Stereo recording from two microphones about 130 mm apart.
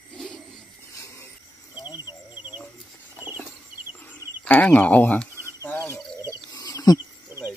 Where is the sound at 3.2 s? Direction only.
15° right (ahead or behind).